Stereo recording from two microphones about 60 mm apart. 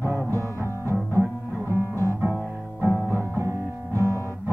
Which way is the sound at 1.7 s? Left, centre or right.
Left.